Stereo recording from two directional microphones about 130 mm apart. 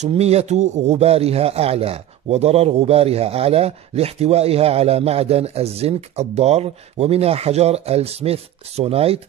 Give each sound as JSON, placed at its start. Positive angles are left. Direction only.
{"t": 0.1, "sound": "a man's voice", "side_deg": -55}